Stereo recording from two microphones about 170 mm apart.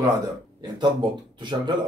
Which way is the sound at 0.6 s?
25° right (ahead or behind).